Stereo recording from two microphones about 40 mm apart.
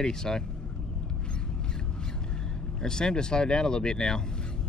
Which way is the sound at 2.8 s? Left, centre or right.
Centre.